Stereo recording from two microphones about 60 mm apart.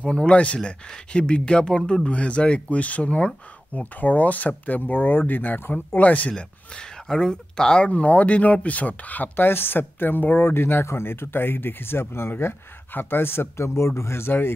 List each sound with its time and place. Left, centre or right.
0.0 s speech: centre; by 5.9 s left
5.9 s speech: left
6.3 s speech: centre; by 14.5 s left